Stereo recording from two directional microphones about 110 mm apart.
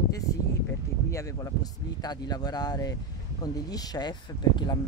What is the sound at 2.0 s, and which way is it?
Speech, 35° left (ahead or behind).